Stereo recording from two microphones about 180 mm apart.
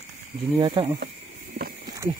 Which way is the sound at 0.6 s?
30° right (ahead or behind).